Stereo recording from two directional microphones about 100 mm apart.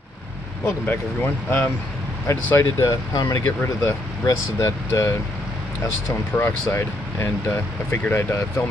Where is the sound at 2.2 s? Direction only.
30° left (ahead or behind).